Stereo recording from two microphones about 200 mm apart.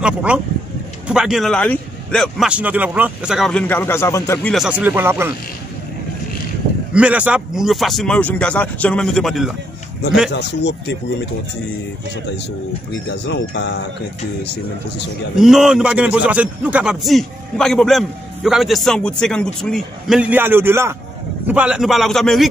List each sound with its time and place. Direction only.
0.0 s a man's voice: 5° right (ahead or behind)
6.9 s a man's voice: 5° right (ahead or behind)
10.3 s speech: 60° left (ahead or behind)
12.9 s speech: 60° left (ahead or behind)
15.3 s a man's voice: centre (ahead or behind)